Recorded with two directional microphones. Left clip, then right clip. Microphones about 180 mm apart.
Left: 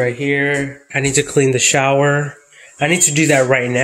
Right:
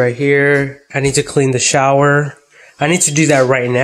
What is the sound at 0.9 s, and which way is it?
Speech, 5° right (ahead or behind).